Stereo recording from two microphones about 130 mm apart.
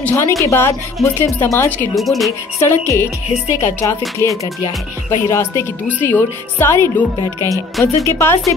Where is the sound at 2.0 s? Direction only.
Centre (ahead or behind).